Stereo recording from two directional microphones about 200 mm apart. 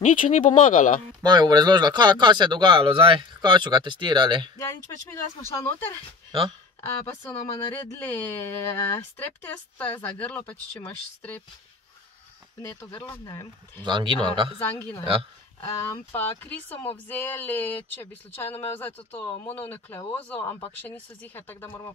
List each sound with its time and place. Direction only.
0.0 s speech: 40° left (ahead or behind)
1.2 s speech: 20° right (ahead or behind)
4.6 s speech: 15° left (ahead or behind)
13.1 s speech: 15° left (ahead or behind)
13.8 s speech: 25° right (ahead or behind)
14.6 s speech: 10° left (ahead or behind)
16.2 s speech: 10° left (ahead or behind)